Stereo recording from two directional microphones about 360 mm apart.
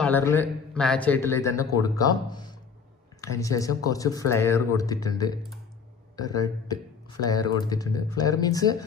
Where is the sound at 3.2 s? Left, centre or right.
Centre.